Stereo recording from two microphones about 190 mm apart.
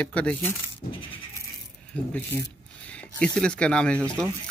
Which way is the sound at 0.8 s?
50° left (ahead or behind).